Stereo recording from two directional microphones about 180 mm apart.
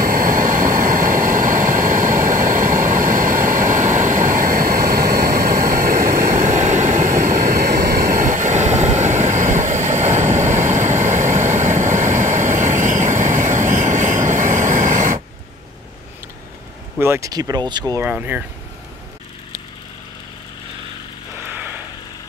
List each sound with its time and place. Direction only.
0.0 s vehicle: 50° right (ahead or behind)
17.0 s speech: 15° right (ahead or behind)
18.0 s speech: 10° right (ahead or behind)